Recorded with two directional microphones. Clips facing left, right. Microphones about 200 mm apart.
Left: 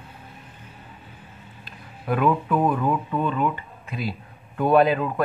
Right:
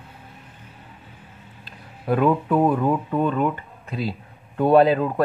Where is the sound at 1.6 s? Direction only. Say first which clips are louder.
Right 3 dB; 30° right (ahead or behind).